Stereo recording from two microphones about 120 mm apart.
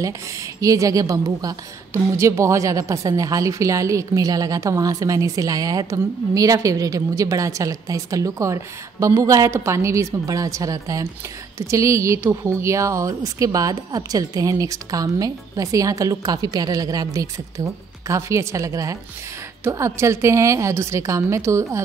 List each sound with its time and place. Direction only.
0.6 s a woman's voice: 25° right (ahead or behind)